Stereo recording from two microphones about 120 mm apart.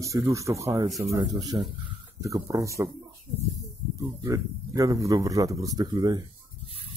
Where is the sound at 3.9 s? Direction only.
30° right (ahead or behind).